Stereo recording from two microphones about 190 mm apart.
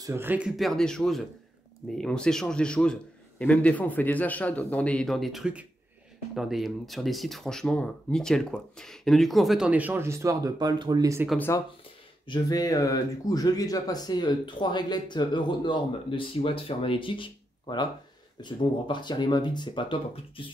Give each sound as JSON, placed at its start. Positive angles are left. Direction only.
{"t": 0.0, "sound": "speech", "side_deg": -10}
{"t": 11.2, "sound": "speech", "side_deg": 10}